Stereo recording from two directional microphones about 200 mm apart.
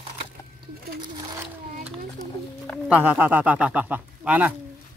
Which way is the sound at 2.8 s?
5° right (ahead or behind).